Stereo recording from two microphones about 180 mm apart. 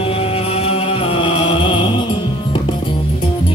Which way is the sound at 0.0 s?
35° left (ahead or behind).